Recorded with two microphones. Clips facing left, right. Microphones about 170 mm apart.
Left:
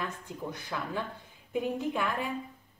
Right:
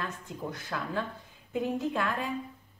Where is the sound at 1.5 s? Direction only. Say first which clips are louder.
Right 1 dB; 15° left (ahead or behind).